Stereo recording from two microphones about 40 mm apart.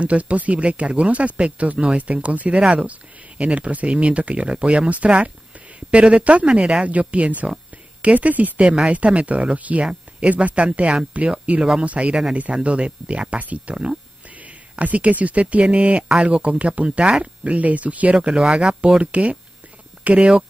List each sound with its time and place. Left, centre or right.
0.0 s speech: right
18.4 s speech: centre
18.9 s speech: right